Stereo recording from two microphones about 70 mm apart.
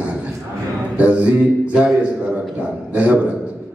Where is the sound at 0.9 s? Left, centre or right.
Centre.